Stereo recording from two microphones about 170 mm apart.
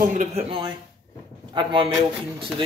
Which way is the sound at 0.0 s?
50° right (ahead or behind).